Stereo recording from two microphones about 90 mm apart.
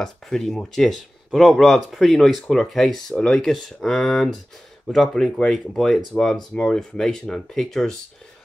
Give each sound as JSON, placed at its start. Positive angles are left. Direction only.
{"t": 0.0, "sound": "speech", "side_deg": 5}